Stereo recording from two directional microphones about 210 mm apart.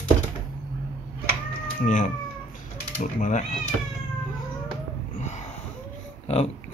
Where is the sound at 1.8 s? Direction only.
35° left (ahead or behind).